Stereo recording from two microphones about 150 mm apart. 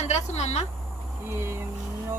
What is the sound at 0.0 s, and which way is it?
Speech, 50° left (ahead or behind).